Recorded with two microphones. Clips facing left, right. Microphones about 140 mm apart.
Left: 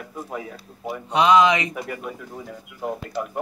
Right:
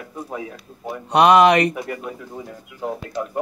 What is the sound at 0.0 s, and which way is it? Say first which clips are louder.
Speech: right 2 dB; centre (ahead or behind).